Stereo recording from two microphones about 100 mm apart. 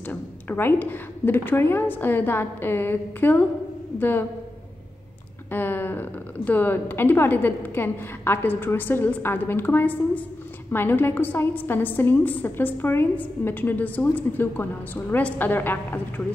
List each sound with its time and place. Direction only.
0.0 s a woman's voice: 20° left (ahead or behind)
5.5 s a woman's voice: 20° left (ahead or behind)